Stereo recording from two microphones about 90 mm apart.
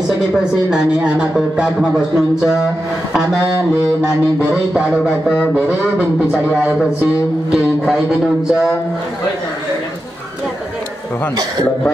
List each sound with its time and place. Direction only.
0.4 s a man's voice: 10° right (ahead or behind)
5.5 s a man's voice: 10° right (ahead or behind)